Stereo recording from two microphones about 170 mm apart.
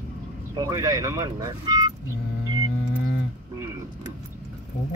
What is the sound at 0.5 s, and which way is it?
Speech, 20° right (ahead or behind).